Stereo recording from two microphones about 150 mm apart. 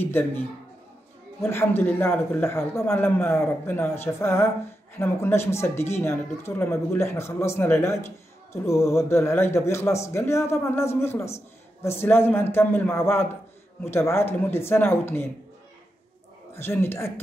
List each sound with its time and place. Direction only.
0.0 s a woman's voice: 15° left (ahead or behind)
1.4 s a woman's voice: 15° left (ahead or behind)
16.5 s a woman's voice: 15° left (ahead or behind)